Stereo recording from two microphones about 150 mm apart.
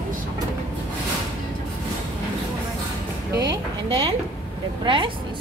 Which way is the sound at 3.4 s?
30° right (ahead or behind).